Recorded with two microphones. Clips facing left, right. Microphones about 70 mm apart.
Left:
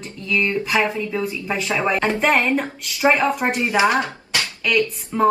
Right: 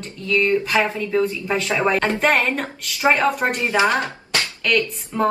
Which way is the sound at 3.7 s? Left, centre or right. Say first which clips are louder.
Left 1 dB; centre.